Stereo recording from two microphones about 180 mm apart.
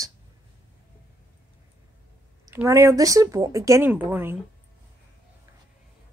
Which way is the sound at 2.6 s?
15° right (ahead or behind).